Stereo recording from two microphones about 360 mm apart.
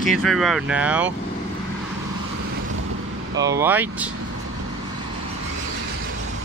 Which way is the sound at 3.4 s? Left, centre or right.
Centre.